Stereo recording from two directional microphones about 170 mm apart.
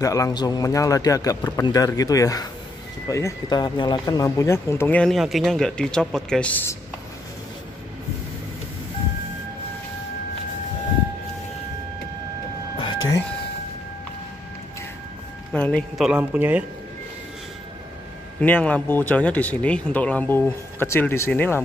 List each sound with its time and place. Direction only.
0.0 s speech: 20° left (ahead or behind); by 6.5 s 5° left (ahead or behind)
12.7 s vehicle: 30° left (ahead or behind)
15.5 s speech: 5° left (ahead or behind)
16.1 s speech: 10° right (ahead or behind)
18.4 s speech: 10° left (ahead or behind)